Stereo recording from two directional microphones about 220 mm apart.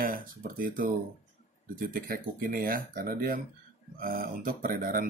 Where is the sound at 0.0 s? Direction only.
40° right (ahead or behind).